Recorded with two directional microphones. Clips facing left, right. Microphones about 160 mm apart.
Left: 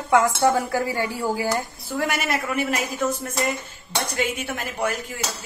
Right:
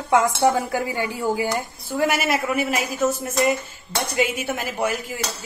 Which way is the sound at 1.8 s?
5° right (ahead or behind).